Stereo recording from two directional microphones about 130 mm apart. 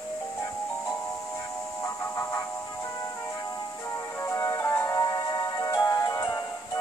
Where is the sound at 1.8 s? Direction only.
20° left (ahead or behind).